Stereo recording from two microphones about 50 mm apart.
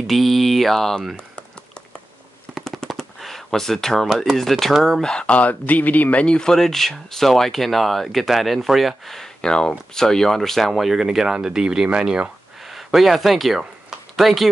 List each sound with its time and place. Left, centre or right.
0.0 s speech: centre
3.0 s a sound: centre
4.1 s speech: centre
5.0 s speech: left
6.2 s speech: centre
6.5 s speech: centre
9.4 s speech: centre
10.7 s speech: centre
12.6 s a sound: centre